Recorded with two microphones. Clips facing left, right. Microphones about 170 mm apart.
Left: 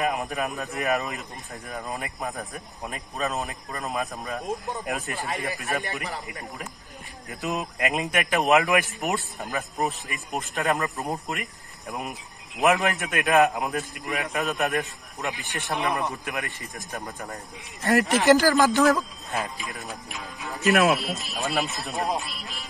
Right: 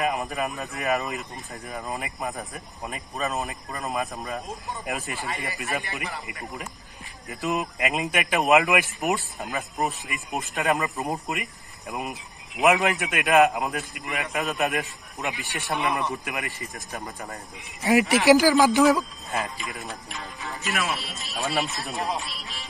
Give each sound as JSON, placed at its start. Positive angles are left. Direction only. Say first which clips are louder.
{"t": 0.0, "sound": "speech", "louder": "even", "side_deg": 0}
{"t": 7.2, "sound": "speech", "louder": "right 2 dB", "side_deg": 0}